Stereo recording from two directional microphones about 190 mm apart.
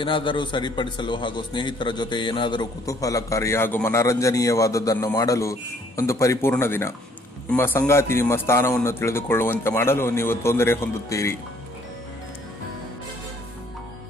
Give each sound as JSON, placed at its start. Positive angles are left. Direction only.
{"t": 0.0, "sound": "a man's voice", "side_deg": 25}